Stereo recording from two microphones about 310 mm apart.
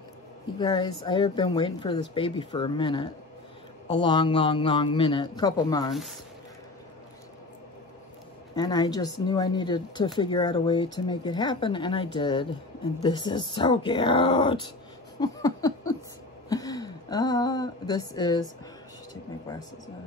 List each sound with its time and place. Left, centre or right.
0.6 s speech: centre
5.9 s speech: centre
8.5 s speech: centre